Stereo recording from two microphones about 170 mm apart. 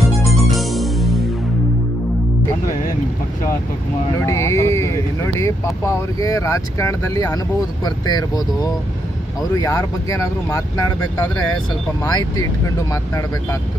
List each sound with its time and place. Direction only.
0.0 s music: centre (ahead or behind)
4.3 s speech: 15° left (ahead or behind)